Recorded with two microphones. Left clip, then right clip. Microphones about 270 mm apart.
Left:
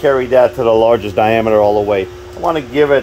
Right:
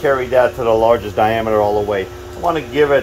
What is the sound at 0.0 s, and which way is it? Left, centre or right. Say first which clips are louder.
Speech: left 3 dB; left.